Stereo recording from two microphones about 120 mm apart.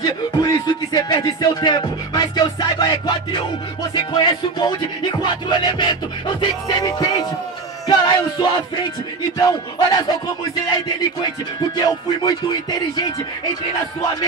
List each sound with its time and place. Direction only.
0.0 s music: 35° left (ahead or behind)
11.7 s music: 35° left (ahead or behind)